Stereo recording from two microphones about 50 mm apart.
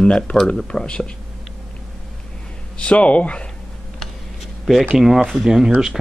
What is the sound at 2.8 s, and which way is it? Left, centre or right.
Speech, left.